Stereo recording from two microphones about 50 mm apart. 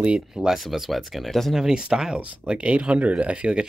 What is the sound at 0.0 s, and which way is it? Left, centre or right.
Speech, right.